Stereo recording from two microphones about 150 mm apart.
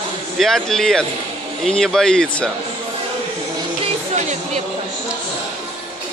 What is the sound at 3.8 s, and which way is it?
Music, 50° right (ahead or behind).